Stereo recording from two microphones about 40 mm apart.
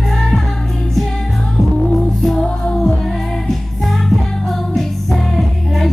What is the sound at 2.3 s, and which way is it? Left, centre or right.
Music, left.